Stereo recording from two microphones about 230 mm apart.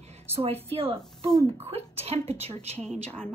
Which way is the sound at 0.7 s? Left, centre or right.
Right.